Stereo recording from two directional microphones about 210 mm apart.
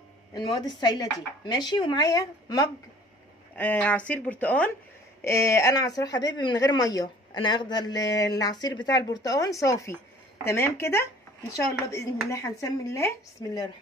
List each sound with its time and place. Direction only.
0.3 s speech: 20° left (ahead or behind)